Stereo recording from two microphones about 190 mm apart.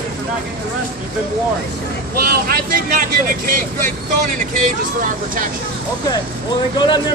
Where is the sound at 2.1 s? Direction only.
55° right (ahead or behind).